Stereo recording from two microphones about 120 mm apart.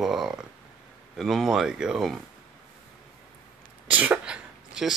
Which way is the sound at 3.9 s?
15° right (ahead or behind).